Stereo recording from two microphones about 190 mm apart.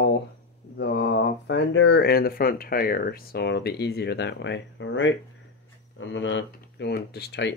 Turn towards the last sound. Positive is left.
turn(degrees=60)  # may be behind; listen again after turning